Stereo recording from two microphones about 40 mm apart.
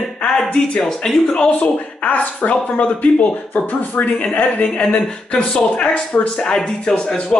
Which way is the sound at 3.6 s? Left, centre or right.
Left.